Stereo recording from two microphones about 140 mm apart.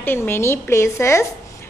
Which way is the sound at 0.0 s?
15° left (ahead or behind).